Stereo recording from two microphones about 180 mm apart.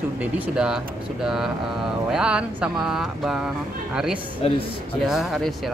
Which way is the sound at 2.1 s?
5° right (ahead or behind).